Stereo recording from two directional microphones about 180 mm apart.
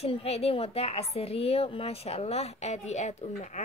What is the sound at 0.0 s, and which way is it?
A woman's voice, 35° left (ahead or behind).